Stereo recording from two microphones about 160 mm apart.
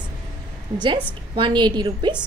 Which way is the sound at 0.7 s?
30° right (ahead or behind).